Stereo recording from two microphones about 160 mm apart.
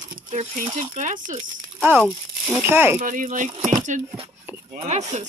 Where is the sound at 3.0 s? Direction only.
55° right (ahead or behind).